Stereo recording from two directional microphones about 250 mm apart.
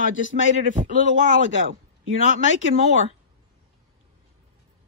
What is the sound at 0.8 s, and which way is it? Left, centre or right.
Speech, right.